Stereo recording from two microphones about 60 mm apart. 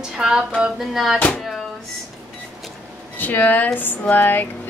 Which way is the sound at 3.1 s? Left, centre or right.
Left.